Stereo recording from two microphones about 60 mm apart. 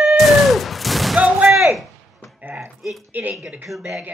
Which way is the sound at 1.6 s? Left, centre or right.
Centre.